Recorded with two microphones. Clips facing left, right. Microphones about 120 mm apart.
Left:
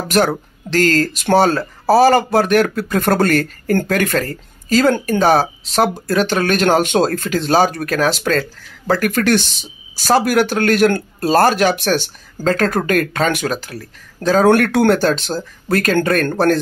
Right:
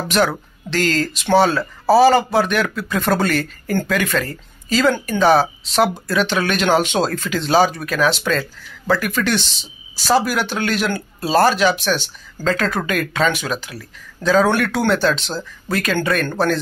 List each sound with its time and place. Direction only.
0.1 s speech: 45° left (ahead or behind)